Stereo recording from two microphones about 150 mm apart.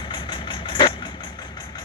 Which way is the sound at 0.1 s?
30° left (ahead or behind).